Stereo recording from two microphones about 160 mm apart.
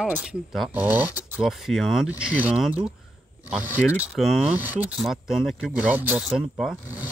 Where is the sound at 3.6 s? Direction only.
15° left (ahead or behind).